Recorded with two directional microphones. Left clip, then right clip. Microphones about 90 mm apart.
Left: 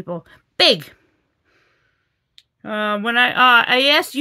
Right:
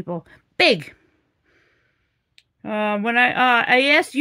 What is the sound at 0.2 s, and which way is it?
Speech, 30° left (ahead or behind).